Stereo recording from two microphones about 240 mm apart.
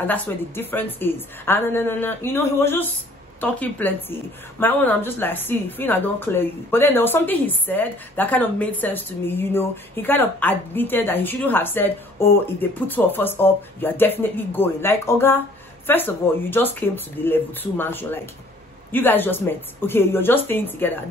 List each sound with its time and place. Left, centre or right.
0.0 s speech: centre